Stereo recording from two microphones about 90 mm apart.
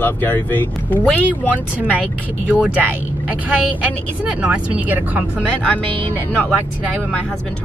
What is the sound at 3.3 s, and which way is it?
Speech, 15° right (ahead or behind).